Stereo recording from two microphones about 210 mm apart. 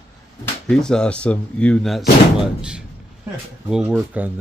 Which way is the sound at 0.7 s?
5° left (ahead or behind).